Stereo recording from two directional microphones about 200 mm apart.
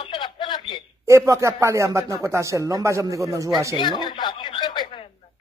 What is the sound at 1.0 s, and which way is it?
Speech, 15° right (ahead or behind).